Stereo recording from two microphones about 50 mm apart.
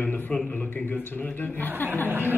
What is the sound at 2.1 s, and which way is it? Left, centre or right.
Speech, right.